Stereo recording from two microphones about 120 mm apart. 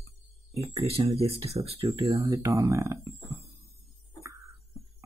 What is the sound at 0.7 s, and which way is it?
Speech, 55° right (ahead or behind).